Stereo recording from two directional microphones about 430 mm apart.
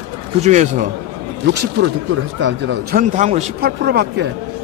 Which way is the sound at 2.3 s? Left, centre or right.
Right.